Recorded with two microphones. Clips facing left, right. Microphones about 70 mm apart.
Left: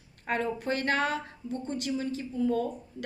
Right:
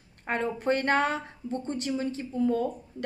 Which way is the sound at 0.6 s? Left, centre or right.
Right.